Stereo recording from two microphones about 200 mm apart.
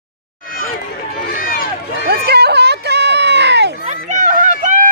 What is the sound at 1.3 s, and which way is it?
Run, 45° left (ahead or behind).